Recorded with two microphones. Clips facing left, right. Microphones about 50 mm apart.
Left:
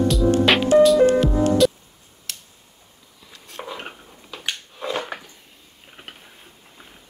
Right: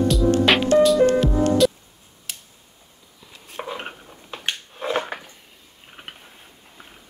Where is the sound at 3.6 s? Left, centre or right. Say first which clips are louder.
Right 2 dB; centre.